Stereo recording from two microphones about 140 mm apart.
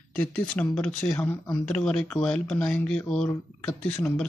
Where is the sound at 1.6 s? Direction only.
5° left (ahead or behind).